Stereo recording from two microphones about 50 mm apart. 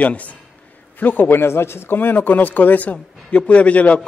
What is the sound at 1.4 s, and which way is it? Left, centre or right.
A man's voice, left.